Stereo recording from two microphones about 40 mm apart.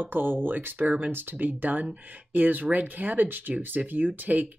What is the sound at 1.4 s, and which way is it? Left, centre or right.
Speech, right.